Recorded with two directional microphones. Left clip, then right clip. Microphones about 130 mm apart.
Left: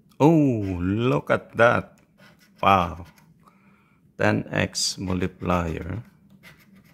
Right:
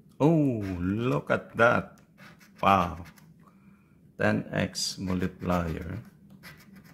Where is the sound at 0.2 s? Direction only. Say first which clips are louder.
Left 6 dB; 50° left (ahead or behind).